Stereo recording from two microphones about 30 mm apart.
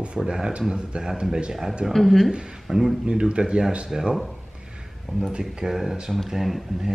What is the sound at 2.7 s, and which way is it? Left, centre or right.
Speech, centre.